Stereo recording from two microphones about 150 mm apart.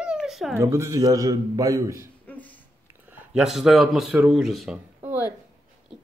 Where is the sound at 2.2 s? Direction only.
10° left (ahead or behind).